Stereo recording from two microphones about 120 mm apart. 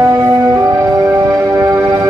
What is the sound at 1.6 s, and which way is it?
Music, 15° right (ahead or behind).